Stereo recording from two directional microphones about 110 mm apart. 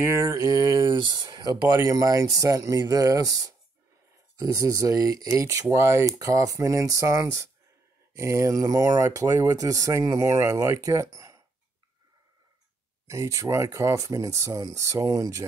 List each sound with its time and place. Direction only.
0.0 s speech: 25° right (ahead or behind)
13.0 s speech: 30° right (ahead or behind)